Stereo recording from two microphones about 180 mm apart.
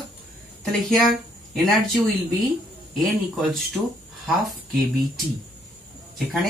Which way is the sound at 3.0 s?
Centre (ahead or behind).